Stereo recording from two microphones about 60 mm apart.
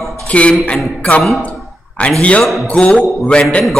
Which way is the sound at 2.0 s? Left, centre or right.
Left.